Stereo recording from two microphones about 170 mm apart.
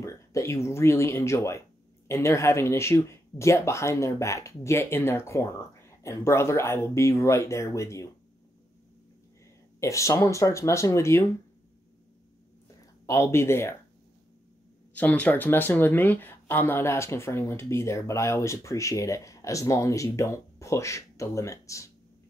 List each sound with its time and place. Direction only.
0.0 s speech: 15° left (ahead or behind)
9.8 s speech: 15° left (ahead or behind)
13.0 s speech: 15° left (ahead or behind)
15.0 s speech: 10° left (ahead or behind)